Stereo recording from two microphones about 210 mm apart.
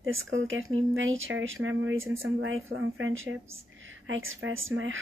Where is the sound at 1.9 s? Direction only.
10° right (ahead or behind).